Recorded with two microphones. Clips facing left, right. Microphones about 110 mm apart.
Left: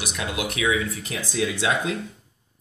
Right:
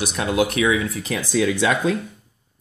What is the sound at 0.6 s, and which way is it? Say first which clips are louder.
Speech: right 4 dB; 75° right (ahead or behind).